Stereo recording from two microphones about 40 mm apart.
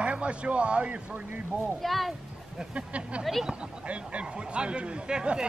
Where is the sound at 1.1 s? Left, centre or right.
Right.